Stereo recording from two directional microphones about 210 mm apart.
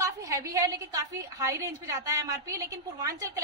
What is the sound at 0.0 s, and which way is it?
A woman's voice, 15° right (ahead or behind).